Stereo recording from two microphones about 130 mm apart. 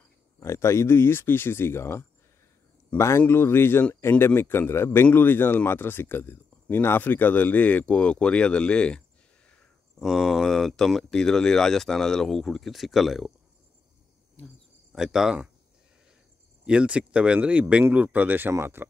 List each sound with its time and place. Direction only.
0.4 s speech: 20° left (ahead or behind); by 13.3 s centre (ahead or behind)
14.4 s cricket: 10° left (ahead or behind)
14.9 s speech: 5° right (ahead or behind)
16.6 s speech: 10° right (ahead or behind)